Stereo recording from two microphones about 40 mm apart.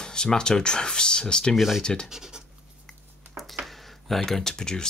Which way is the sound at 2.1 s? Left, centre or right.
Centre.